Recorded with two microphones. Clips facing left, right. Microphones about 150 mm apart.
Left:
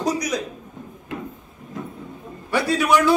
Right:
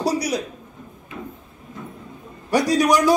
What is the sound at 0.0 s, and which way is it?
Speech, 35° right (ahead or behind).